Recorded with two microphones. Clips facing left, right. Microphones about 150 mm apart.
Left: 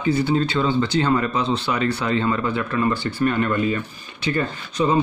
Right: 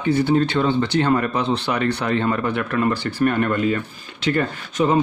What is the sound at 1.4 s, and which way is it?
Speech, 65° right (ahead or behind).